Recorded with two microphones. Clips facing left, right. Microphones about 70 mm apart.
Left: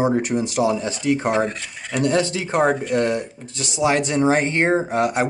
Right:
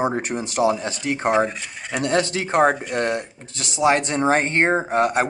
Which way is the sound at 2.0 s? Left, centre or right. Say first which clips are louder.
Left 1 dB; right.